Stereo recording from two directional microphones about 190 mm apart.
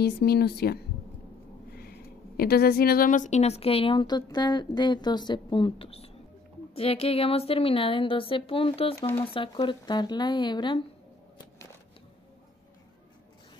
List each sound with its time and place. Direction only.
0.0 s speech: 55° left (ahead or behind)
1.8 s a woman's voice: 55° left (ahead or behind); by 10.8 s 25° left (ahead or behind)